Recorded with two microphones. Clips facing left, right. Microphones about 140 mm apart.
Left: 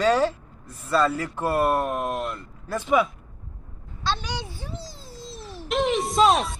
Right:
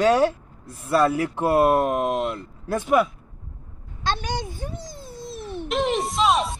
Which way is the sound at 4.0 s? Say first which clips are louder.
Right 2 dB; 50° right (ahead or behind).